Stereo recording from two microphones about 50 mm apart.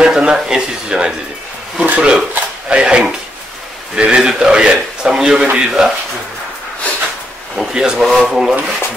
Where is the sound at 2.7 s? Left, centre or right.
Centre.